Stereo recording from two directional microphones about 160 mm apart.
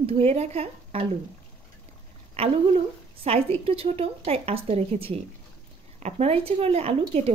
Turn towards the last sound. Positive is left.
turn(degrees=-40)  # may be behind; listen again after turning